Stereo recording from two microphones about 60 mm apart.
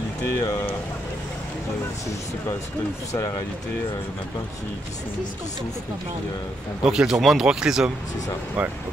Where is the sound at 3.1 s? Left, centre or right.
Left.